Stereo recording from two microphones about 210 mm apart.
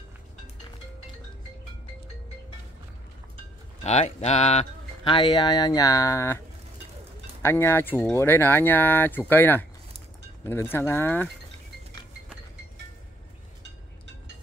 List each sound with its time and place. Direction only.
3.8 s speech: 30° left (ahead or behind); by 6.4 s 15° left (ahead or behind)
7.4 s speech: 10° left (ahead or behind)